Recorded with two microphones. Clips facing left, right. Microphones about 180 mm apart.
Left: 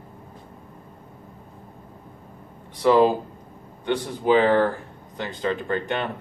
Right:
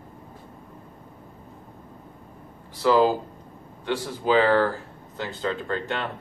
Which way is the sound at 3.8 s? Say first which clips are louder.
Left 3 dB; 20° left (ahead or behind).